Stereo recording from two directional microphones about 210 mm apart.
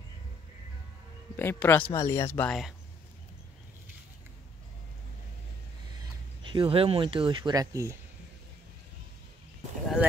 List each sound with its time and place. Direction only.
1.3 s speech: 10° left (ahead or behind)
6.4 s speech: 25° right (ahead or behind)